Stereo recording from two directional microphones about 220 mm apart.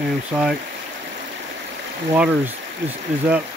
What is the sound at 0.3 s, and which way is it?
Speech, 5° right (ahead or behind).